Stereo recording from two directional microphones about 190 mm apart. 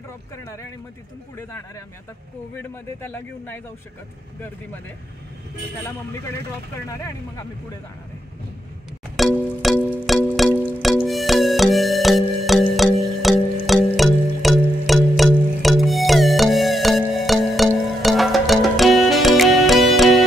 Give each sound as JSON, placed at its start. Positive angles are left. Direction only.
{"t": 3.0, "sound": "a man's voice", "side_deg": 10}
{"t": 9.1, "sound": "music", "side_deg": 0}